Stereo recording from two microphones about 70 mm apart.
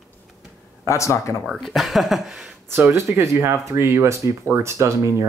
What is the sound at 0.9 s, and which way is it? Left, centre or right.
Speech, left.